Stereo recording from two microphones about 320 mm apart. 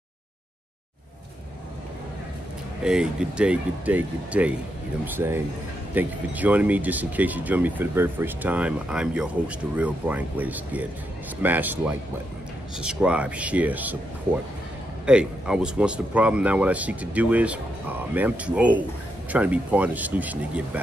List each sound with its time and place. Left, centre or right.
2.8 s speech: centre